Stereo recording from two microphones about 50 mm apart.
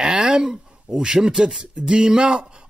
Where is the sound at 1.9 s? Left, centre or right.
Centre.